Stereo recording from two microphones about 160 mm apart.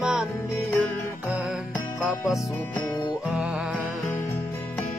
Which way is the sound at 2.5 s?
10° left (ahead or behind).